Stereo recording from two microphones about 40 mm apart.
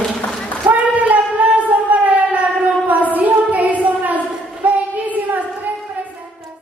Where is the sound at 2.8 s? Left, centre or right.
Right.